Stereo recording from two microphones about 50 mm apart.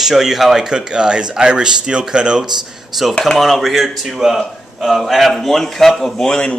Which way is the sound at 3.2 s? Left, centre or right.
Centre.